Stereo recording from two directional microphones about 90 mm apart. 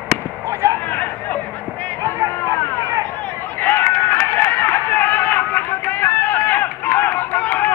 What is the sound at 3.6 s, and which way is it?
Run, 20° left (ahead or behind).